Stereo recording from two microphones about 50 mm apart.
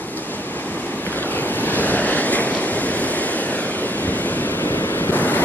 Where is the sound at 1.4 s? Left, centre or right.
Left.